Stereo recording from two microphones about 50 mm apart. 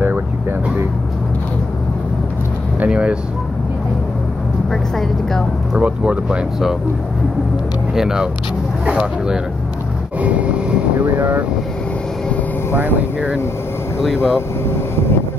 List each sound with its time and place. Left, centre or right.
0.0 s music: right
2.9 s speech: right
4.6 s vehicle: centre
5.8 s speech: right
7.9 s speech: centre
10.2 s speech: right
14.1 s speech: centre
14.7 s boat: left